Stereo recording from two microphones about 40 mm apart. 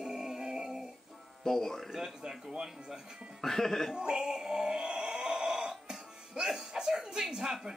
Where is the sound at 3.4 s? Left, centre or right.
Centre.